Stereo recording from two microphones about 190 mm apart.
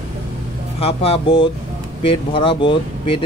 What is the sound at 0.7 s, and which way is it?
Speech, 30° left (ahead or behind).